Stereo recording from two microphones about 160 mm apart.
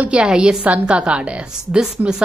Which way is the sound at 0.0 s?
5° right (ahead or behind).